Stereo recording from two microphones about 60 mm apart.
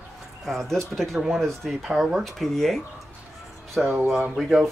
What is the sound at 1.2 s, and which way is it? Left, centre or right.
Speech, centre.